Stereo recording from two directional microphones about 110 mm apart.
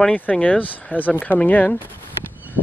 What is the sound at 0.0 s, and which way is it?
Speech, 10° left (ahead or behind).